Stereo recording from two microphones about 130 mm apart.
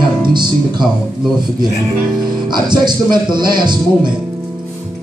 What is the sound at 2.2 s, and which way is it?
A man's voice, 35° right (ahead or behind).